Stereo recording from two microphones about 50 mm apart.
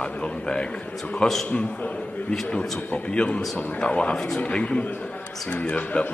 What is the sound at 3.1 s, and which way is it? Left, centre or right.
A man's voice, left.